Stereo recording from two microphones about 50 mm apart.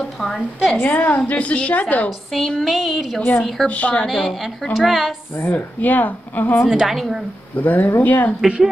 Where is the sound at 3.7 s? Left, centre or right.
Left.